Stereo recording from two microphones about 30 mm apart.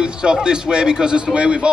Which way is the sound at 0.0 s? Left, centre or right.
Right.